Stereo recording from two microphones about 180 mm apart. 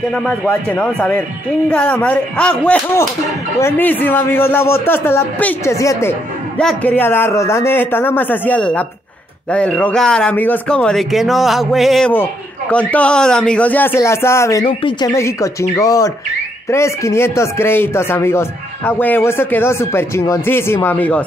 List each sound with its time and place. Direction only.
0.1 s speech: 5° left (ahead or behind)
6.6 s speech: 5° left (ahead or behind)